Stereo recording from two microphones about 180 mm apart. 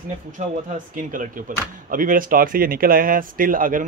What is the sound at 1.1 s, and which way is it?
Speech, 50° right (ahead or behind).